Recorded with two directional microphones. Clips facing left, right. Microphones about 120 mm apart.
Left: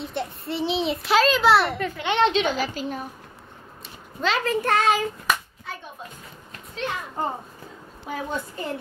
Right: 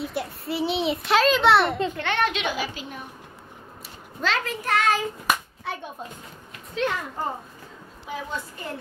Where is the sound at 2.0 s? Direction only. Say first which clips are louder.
Left 4 dB; 20° left (ahead or behind).